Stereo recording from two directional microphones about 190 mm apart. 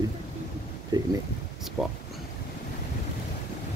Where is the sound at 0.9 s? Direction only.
20° right (ahead or behind).